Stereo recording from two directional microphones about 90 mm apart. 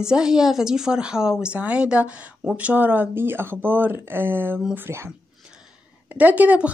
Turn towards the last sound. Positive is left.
turn(degrees=-15)  # may be behind; listen again after turning